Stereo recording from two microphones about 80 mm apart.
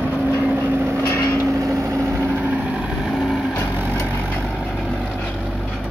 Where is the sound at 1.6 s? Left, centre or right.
Right.